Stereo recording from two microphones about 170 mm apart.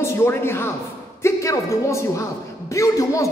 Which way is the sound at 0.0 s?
15° left (ahead or behind).